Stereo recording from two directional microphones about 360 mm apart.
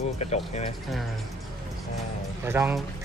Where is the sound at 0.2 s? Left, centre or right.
Centre.